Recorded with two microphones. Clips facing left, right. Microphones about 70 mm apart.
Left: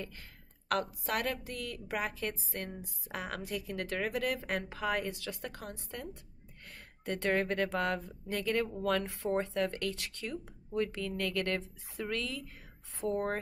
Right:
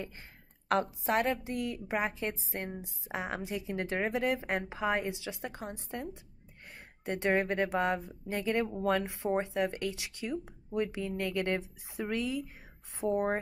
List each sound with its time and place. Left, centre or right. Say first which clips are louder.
0.7 s speech: right 4 dB; right
7.1 s speech: right 2 dB; centre